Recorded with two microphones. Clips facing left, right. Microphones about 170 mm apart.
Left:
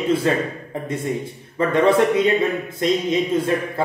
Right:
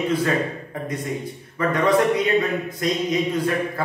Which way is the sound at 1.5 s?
25° left (ahead or behind).